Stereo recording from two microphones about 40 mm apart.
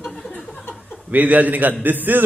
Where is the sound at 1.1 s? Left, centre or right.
Right.